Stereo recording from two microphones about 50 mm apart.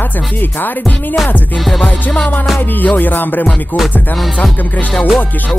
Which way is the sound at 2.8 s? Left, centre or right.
Left.